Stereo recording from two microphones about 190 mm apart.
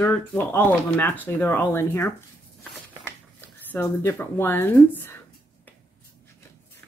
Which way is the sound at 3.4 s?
10° left (ahead or behind).